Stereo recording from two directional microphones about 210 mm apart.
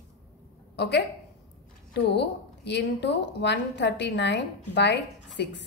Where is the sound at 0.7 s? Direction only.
50° left (ahead or behind).